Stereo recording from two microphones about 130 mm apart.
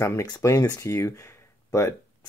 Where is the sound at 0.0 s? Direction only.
25° left (ahead or behind).